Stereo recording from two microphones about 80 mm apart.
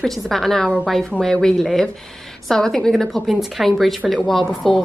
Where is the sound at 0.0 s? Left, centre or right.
Centre.